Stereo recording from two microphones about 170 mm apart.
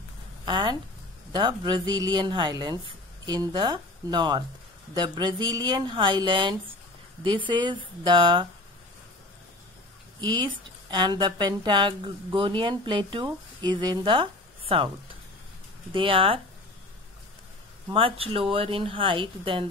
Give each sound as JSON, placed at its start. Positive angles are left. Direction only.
{"t": 0.5, "sound": "speech", "side_deg": -25}
{"t": 10.2, "sound": "speech", "side_deg": -25}
{"t": 15.9, "sound": "speech", "side_deg": -30}
{"t": 17.9, "sound": "speech", "side_deg": -30}